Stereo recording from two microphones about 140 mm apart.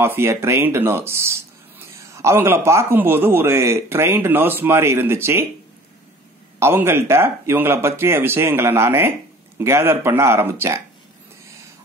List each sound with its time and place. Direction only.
0.0 s a man's voice: 15° right (ahead or behind)
6.6 s a man's voice: 15° right (ahead or behind)